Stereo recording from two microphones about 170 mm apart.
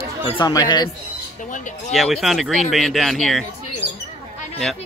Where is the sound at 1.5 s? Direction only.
45° left (ahead or behind).